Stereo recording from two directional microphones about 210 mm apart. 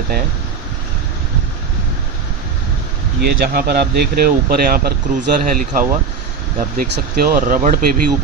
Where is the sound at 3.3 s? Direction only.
45° right (ahead or behind).